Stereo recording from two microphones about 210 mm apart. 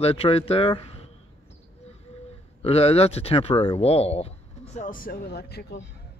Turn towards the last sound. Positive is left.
turn(degrees=50)  # may be behind; listen again after turning